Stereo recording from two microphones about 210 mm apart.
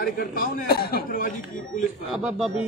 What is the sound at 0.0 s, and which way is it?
A man's voice, 45° left (ahead or behind).